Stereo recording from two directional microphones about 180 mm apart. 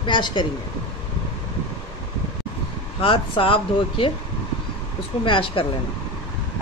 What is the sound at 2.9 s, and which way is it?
Speech, 30° left (ahead or behind).